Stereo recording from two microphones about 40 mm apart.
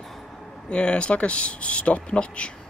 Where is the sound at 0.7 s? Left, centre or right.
Left.